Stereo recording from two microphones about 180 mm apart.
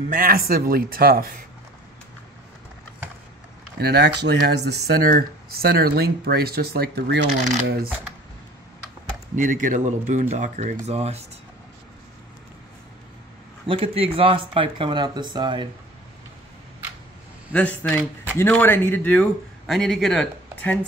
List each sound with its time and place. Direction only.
0.1 s speech: 55° right (ahead or behind)
3.8 s speech: 65° right (ahead or behind)
9.3 s speech: 45° right (ahead or behind)
13.7 s speech: 30° right (ahead or behind)
17.5 s a man's voice: 5° left (ahead or behind)